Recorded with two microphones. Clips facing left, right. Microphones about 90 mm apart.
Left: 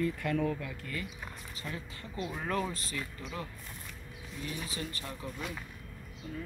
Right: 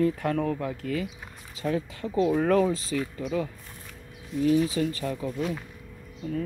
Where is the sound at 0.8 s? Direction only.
90° right.